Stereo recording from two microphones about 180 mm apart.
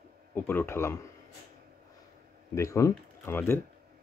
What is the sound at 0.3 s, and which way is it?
Speech, 10° left (ahead or behind).